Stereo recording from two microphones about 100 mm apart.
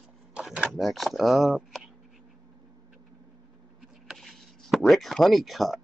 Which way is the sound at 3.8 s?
5° right (ahead or behind).